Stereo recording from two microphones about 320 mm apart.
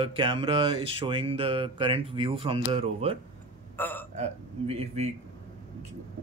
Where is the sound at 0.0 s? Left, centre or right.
Centre.